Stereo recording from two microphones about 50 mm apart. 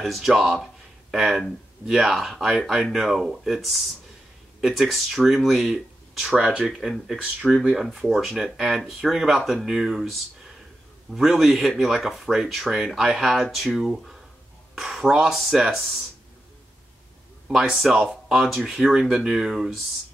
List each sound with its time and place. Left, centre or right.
0.0 s speech: centre
6.4 s speech: centre
6.8 s speech: centre
17.6 s speech: centre